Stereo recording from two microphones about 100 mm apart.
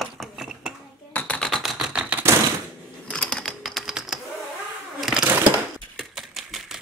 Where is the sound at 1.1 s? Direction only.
15° left (ahead or behind).